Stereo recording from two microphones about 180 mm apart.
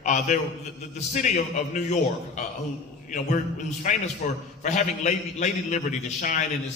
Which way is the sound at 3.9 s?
45° left (ahead or behind).